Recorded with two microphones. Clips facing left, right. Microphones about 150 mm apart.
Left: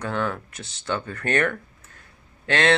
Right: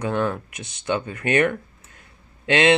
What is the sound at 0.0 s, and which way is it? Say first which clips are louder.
Speech: right 3 dB; 15° right (ahead or behind).